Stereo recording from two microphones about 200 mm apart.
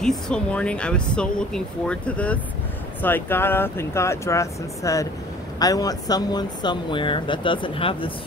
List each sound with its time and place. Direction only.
0.0 s speech: 5° left (ahead or behind); by 8.1 s 25° left (ahead or behind)